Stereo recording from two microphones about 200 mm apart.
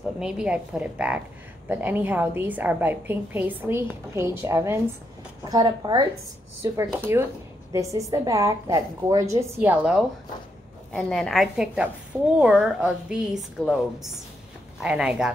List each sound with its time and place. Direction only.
0.2 s a woman's voice: 5° right (ahead or behind)
10.9 s a woman's voice: 5° left (ahead or behind)